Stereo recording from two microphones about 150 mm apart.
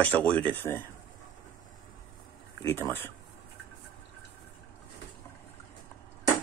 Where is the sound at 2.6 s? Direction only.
15° left (ahead or behind).